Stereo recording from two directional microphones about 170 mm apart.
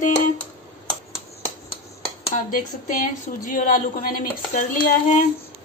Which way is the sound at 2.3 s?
55° left (ahead or behind).